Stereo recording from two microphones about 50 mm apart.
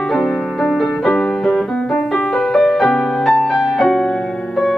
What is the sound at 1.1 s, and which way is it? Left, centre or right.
Music, left.